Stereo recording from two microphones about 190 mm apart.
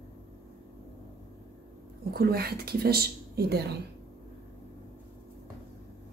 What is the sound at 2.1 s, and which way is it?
Speech, 55° right (ahead or behind).